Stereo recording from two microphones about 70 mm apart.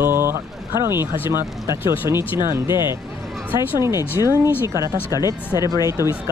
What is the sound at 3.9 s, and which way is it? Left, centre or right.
Speech, left.